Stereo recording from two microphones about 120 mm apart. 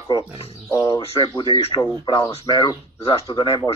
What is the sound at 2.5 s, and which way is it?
Speech, 35° left (ahead or behind).